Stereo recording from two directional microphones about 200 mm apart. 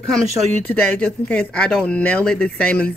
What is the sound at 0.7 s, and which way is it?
Speech, 5° left (ahead or behind).